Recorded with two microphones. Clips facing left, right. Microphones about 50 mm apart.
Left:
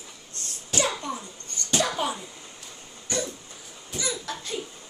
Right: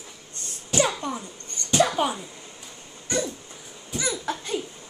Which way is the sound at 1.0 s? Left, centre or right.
Centre.